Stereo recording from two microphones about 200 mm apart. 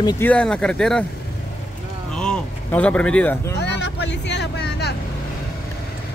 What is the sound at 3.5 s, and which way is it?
Vehicle, 55° left (ahead or behind).